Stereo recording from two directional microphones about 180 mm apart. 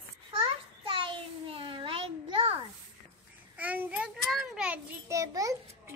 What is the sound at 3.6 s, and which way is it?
A child's voice, 10° right (ahead or behind).